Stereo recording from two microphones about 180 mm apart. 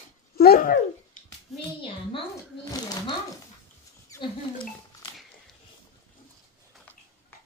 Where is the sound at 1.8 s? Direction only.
25° left (ahead or behind).